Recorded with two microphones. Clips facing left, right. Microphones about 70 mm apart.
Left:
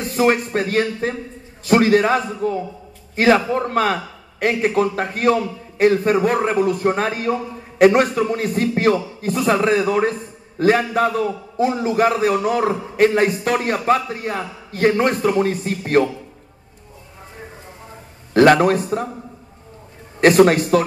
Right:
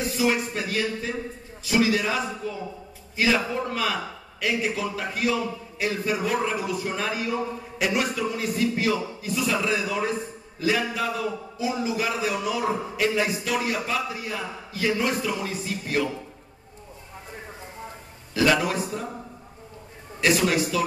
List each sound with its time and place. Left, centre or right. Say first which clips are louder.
0.0 s a man's voice: left 6 dB; left
18.3 s a man's voice: left 10 dB; left
20.2 s a man's voice: left 10 dB; left